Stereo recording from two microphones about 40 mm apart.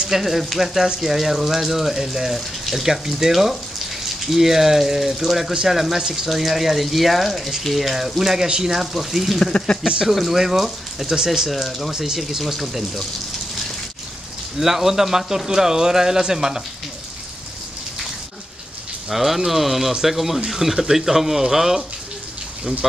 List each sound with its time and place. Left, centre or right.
0.1 s speech: centre
8.9 s speech: centre
9.4 s speech: centre
10.1 s speech: centre
14.6 s speech: centre
19.0 s speech: centre